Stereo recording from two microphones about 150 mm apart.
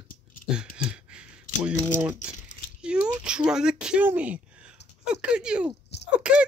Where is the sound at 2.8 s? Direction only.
5° right (ahead or behind).